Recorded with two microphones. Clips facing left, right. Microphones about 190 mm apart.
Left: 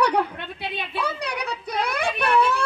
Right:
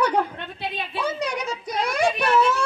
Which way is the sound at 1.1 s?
60° left (ahead or behind).